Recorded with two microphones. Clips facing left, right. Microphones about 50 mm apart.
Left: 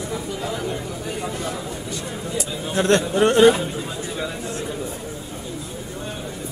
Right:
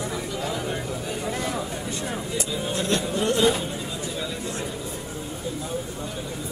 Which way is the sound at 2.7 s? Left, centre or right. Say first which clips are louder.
Left 8 dB; left.